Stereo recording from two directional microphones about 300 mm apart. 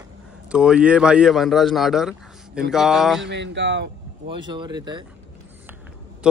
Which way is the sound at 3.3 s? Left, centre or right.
Right.